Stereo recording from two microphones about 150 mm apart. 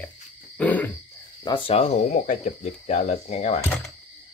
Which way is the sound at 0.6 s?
10° left (ahead or behind).